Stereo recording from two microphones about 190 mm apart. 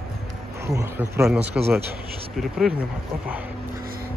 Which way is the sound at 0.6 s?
15° right (ahead or behind).